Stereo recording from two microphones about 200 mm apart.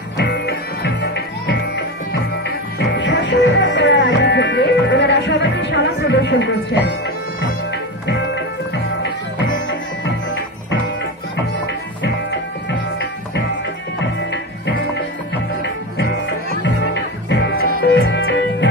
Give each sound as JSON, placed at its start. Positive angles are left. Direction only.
{"t": 0.2, "sound": "music", "side_deg": 55}
{"t": 2.8, "sound": "music", "side_deg": 60}
{"t": 9.0, "sound": "music", "side_deg": 65}
{"t": 16.0, "sound": "music", "side_deg": 55}